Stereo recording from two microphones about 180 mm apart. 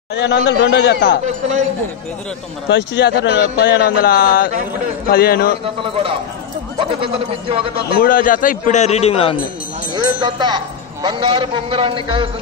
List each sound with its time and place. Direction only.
0.1 s a man's voice: 75° left (ahead or behind)
1.2 s a man's voice: 40° right (ahead or behind)
2.7 s speech: 70° left (ahead or behind)
7.0 s speech: 30° right (ahead or behind)
8.0 s a man's voice: 50° left (ahead or behind); by 9.4 s 30° left (ahead or behind)
9.9 s speech: 25° right (ahead or behind)